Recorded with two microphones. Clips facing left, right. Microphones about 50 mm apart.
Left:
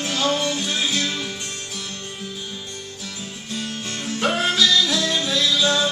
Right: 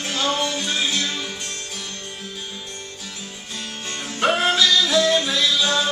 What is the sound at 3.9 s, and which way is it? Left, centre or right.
Music, centre.